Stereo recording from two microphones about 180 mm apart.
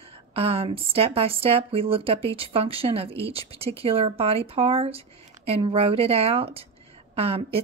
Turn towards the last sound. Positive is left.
turn(degrees=-35)  # may be behind; listen again after turning